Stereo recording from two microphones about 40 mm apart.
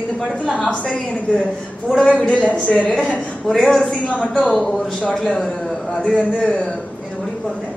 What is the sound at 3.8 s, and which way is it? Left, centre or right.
Speech, left.